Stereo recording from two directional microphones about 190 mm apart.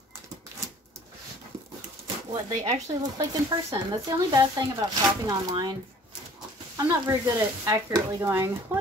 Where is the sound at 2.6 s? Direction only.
20° right (ahead or behind).